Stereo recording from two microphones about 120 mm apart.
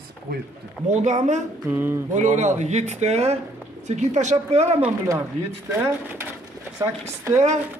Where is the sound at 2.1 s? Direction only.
85° right; by 3.3 s 65° right (ahead or behind).